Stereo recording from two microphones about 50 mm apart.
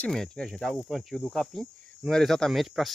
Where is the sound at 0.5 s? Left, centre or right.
Centre.